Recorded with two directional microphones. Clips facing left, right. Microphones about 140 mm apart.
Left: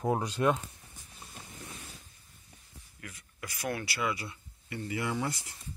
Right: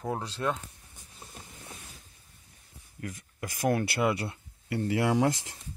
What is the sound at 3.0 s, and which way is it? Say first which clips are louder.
Speech: right 7 dB; 45° right (ahead or behind).